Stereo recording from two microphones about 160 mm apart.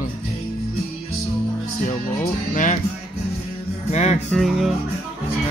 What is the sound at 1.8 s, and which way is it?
Music, 50° left (ahead or behind).